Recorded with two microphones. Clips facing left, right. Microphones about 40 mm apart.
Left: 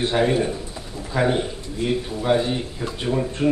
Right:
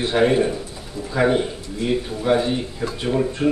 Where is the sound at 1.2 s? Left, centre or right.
Centre.